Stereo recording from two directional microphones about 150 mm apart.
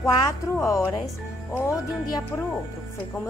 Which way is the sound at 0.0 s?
20° left (ahead or behind).